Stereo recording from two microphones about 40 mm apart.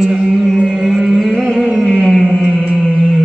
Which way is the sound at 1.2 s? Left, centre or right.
Centre.